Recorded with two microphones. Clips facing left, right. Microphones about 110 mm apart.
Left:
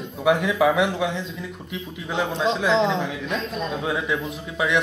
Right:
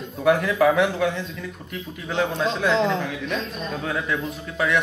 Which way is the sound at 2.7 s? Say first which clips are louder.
Left 1 dB; 25° left (ahead or behind).